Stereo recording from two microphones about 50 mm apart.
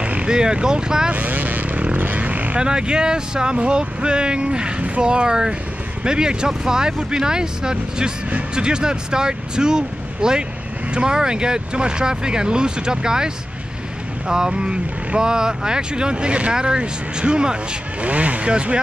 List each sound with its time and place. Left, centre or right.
0.0 s speech: right
1.1 s vehicle: right
2.6 s speech: centre